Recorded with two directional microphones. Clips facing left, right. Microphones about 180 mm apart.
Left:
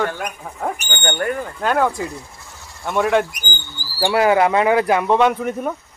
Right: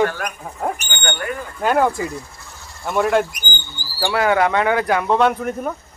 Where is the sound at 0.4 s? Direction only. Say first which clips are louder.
Right 1 dB; 10° right (ahead or behind).